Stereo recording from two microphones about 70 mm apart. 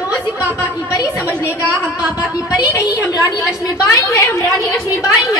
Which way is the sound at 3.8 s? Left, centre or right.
Left.